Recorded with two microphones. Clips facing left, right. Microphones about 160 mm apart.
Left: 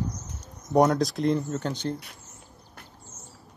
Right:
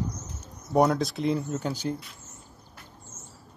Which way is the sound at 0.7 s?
Centre (ahead or behind).